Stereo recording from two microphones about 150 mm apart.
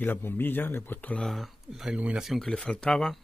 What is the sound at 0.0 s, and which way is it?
Speech, 15° left (ahead or behind).